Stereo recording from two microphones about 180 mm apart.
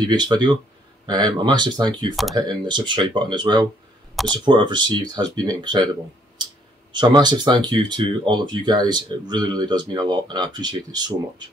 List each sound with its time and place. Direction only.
0.0 s speech: 25° right (ahead or behind)
4.1 s a sound: centre (ahead or behind)
4.5 s speech: 25° right (ahead or behind)
6.9 s speech: 25° right (ahead or behind)